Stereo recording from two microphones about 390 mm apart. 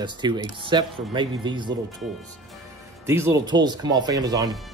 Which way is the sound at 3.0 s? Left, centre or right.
Centre.